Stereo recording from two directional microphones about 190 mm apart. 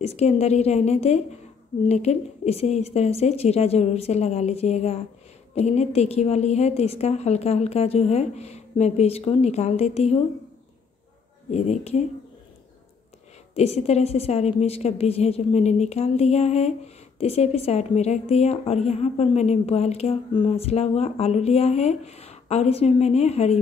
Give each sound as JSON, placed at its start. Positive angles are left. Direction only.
{"t": 0.0, "sound": "a woman's voice", "side_deg": 35}
{"t": 11.5, "sound": "a woman's voice", "side_deg": 35}
{"t": 13.6, "sound": "a woman's voice", "side_deg": 35}